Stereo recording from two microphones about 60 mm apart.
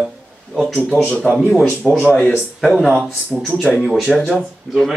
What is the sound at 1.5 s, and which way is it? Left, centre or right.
Speech, centre.